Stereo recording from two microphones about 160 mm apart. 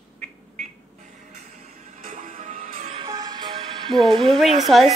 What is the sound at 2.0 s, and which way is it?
Music, 50° right (ahead or behind).